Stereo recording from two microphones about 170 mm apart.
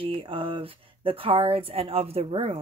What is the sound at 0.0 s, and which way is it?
Speech, 30° right (ahead or behind).